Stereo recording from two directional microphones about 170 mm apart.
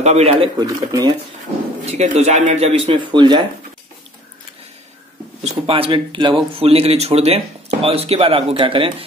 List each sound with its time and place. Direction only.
0.0 s speech: 40° right (ahead or behind)
0.7 s speech: 20° right (ahead or behind)
1.9 s speech: 40° right (ahead or behind)
5.4 s speech: 35° right (ahead or behind)